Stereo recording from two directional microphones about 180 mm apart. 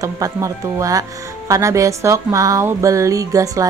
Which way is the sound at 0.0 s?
20° right (ahead or behind).